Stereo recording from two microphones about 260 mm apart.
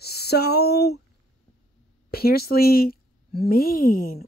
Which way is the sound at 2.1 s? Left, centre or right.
Left.